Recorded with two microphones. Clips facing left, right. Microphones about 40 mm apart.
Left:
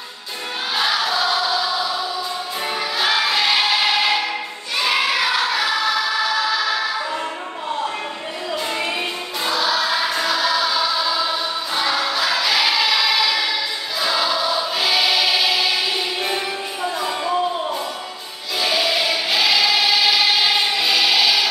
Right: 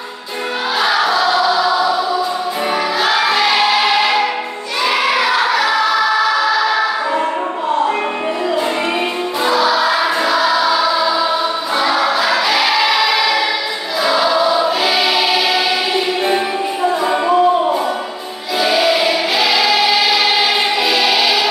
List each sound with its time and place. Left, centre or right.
0.7 s music: centre
1.2 s choir: right
3.4 s music: centre
4.8 s child singing: centre
5.6 s choir: centre
9.4 s music: right
14.0 s choir: centre
14.8 s music: centre
17.0 s music: right
18.6 s choir: centre